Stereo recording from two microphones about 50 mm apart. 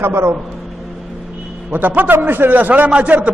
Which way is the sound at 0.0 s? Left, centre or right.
Right.